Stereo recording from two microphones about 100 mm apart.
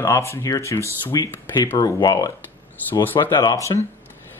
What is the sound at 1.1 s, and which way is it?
Speech, 45° left (ahead or behind).